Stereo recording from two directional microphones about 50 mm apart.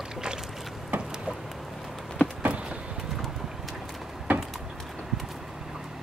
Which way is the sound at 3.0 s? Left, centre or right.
Centre.